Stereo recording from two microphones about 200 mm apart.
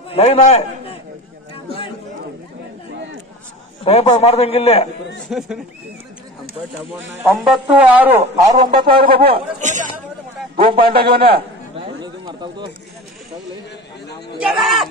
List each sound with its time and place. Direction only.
0.1 s a man's voice: 30° left (ahead or behind)
1.5 s chatter: 25° left (ahead or behind)
3.8 s a man's voice: 30° left (ahead or behind)
5.3 s speech: centre (ahead or behind)
7.2 s speech: centre (ahead or behind)
8.7 s a sound: 25° right (ahead or behind)
9.2 s a man's voice: 45° right (ahead or behind)
10.6 s a sound: 25° right (ahead or behind)
10.9 s a man's voice: 50° right (ahead or behind)
11.7 s a sound: 25° right (ahead or behind)
14.4 s speech: centre (ahead or behind)